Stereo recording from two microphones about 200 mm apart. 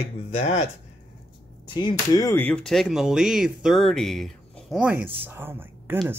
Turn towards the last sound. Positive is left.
turn(degrees=-10)  # may be behind; listen again after turning